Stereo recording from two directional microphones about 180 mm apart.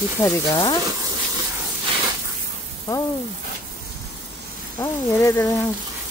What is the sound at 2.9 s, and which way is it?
Speech, 15° left (ahead or behind).